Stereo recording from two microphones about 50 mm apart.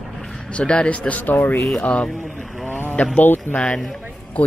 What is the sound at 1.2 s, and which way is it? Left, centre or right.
Speech, left.